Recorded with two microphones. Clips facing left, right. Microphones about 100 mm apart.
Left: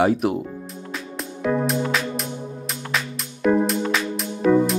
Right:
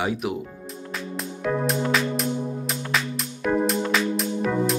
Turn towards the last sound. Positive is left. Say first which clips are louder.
# left 5 dB
turn(degrees=0)  # may be behind; listen again after turning